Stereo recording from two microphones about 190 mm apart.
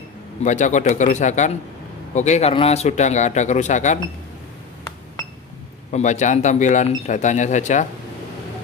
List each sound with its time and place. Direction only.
0.4 s speech: 40° left (ahead or behind)
5.9 s speech: 40° left (ahead or behind)